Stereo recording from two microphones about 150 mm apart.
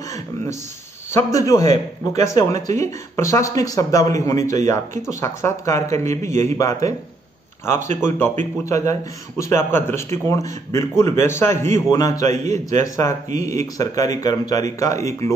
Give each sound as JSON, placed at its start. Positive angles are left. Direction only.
{"t": 1.1, "sound": "a man's voice", "side_deg": 20}
{"t": 12.3, "sound": "a man's voice", "side_deg": -50}
{"t": 12.7, "sound": "speech", "side_deg": 20}